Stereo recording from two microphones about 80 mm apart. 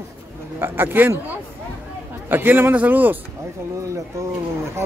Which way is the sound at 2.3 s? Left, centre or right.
Right.